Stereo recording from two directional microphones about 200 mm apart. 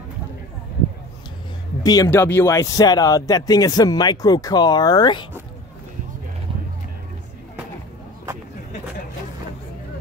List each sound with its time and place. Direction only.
1.8 s speech: 15° left (ahead or behind)